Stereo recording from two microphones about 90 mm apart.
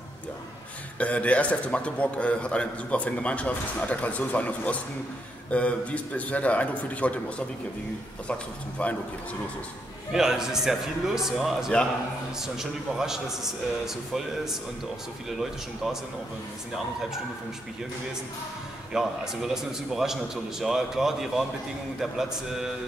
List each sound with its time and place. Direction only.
0.9 s a man's voice: 15° left (ahead or behind)
10.1 s a man's voice: 5° right (ahead or behind)
18.9 s a man's voice: 5° right (ahead or behind)